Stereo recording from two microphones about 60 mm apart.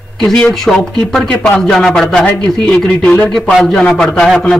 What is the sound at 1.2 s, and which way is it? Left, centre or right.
Speech, left.